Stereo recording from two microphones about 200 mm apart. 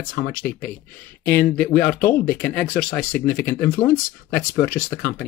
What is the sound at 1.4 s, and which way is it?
Speech, 5° left (ahead or behind).